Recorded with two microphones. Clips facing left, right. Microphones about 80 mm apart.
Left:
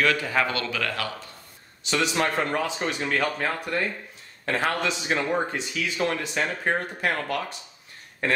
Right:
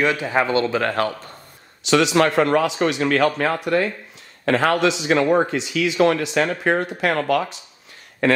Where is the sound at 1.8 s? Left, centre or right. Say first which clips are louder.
Right 8 dB; right.